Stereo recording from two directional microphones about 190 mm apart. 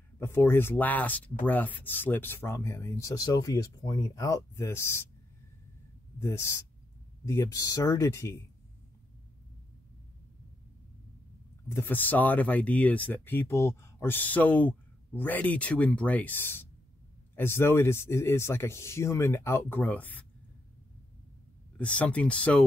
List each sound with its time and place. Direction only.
0.2 s speech: 10° left (ahead or behind)
6.1 s speech: 15° left (ahead or behind)
11.7 s speech: 10° left (ahead or behind)
21.7 s speech: 5° left (ahead or behind)